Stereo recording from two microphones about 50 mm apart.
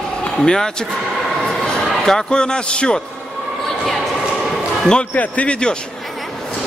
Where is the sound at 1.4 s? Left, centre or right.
Centre.